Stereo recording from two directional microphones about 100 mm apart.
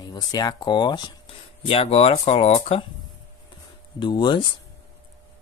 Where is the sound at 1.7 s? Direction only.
85° left.